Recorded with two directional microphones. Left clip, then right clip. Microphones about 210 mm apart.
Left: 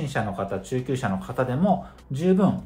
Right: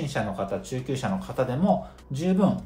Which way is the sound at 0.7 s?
20° left (ahead or behind).